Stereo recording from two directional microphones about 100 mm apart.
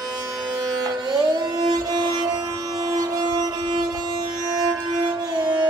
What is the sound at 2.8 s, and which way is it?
Train, 35° right (ahead or behind).